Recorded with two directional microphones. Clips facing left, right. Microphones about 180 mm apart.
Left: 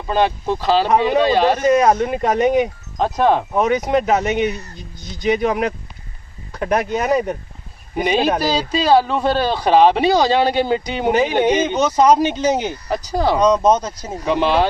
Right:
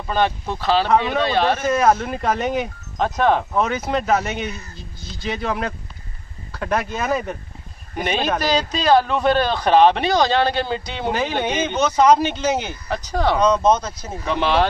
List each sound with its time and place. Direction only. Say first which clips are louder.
0.0 s a man's voice: left 3 dB; 10° left (ahead or behind)